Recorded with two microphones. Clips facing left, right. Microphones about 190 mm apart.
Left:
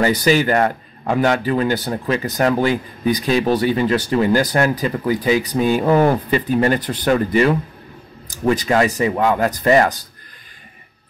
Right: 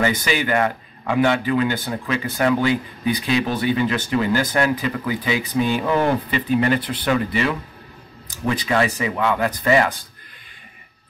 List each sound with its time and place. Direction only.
0.0 s a man's voice: 40° left (ahead or behind)